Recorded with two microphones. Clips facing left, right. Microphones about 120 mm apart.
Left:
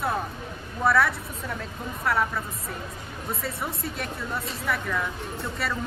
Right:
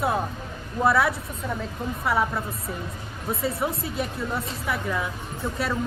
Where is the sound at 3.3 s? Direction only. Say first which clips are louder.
Right 6 dB; centre (ahead or behind).